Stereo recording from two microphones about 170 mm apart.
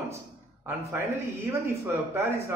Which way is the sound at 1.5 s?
15° right (ahead or behind).